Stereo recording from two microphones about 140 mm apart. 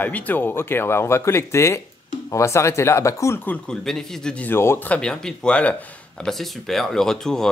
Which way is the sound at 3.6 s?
5° left (ahead or behind).